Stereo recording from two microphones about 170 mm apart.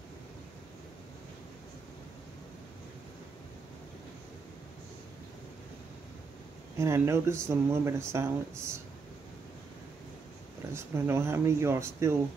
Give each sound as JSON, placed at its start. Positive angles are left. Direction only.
{"t": 6.8, "sound": "speech", "side_deg": -15}
{"t": 10.7, "sound": "speech", "side_deg": -15}